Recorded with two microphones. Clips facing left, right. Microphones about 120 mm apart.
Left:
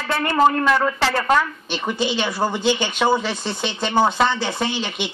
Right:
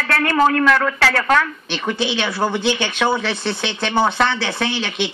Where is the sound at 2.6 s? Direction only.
70° right (ahead or behind).